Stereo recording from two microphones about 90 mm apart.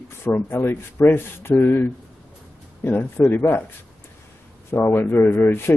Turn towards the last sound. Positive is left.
turn(degrees=25)  # may be behind; listen again after turning